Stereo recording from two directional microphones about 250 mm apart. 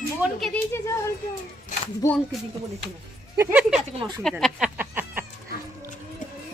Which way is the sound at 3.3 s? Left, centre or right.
Centre.